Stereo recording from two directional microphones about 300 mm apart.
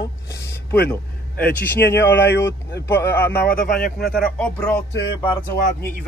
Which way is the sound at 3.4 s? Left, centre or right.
Left.